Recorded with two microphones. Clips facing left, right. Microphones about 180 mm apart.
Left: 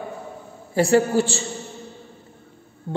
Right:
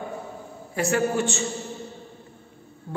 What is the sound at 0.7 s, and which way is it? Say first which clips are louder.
Speech: left 6 dB; 30° left (ahead or behind).